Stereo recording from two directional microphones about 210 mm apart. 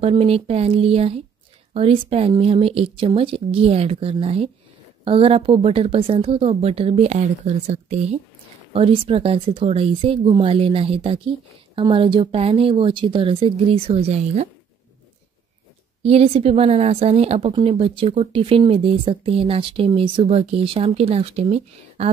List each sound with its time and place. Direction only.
0.0 s speech: 30° right (ahead or behind)
16.0 s speech: 30° right (ahead or behind)